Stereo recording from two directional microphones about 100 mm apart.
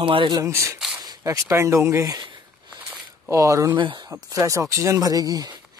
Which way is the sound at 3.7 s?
55° right (ahead or behind).